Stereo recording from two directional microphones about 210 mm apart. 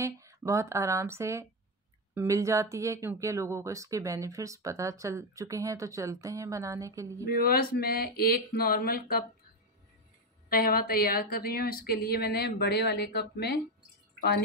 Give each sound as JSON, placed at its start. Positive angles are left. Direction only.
{"t": 0.0, "sound": "speech", "side_deg": -15}
{"t": 7.2, "sound": "a woman's voice", "side_deg": 45}
{"t": 10.5, "sound": "a woman's voice", "side_deg": 45}